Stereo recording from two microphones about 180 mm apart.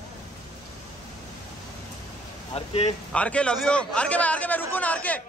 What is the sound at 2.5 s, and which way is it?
Speech, 35° left (ahead or behind).